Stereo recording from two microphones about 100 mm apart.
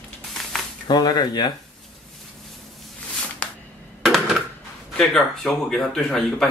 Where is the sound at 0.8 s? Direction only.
45° left (ahead or behind).